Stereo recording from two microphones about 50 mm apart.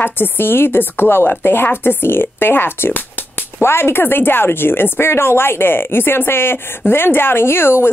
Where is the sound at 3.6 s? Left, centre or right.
Left.